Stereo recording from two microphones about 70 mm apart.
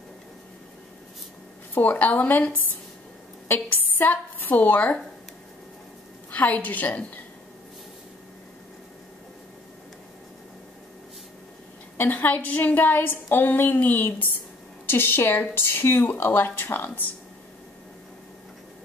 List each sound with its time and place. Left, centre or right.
1.7 s a woman's voice: left
6.3 s a woman's voice: left
12.0 s a woman's voice: left